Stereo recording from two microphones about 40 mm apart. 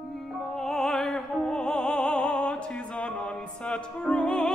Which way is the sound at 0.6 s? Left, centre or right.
Centre.